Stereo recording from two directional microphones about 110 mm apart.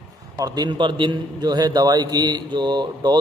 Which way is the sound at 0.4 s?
35° right (ahead or behind).